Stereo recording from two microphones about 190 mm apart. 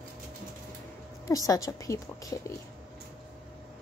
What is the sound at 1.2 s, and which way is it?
A woman's voice, 20° left (ahead or behind).